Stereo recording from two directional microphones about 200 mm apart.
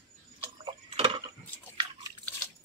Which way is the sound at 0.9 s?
25° right (ahead or behind).